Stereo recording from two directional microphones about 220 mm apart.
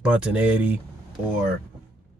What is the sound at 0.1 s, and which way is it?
Speech, 5° right (ahead or behind).